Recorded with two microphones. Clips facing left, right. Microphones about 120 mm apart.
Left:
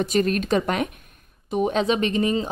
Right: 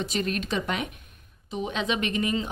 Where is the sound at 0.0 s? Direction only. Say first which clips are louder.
Left 7 dB; 45° left (ahead or behind).